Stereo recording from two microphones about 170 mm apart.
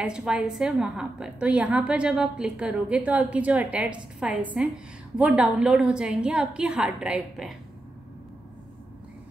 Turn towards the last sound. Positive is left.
turn(degrees=-5)  # may be behind; listen again after turning